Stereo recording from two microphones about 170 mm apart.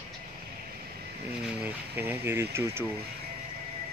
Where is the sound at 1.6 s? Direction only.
10° right (ahead or behind).